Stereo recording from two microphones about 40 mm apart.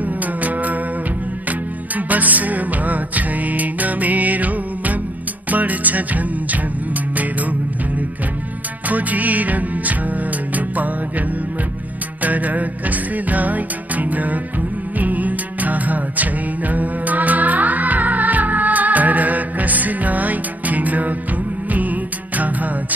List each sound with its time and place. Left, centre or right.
0.2 s music: right
8.8 s music: right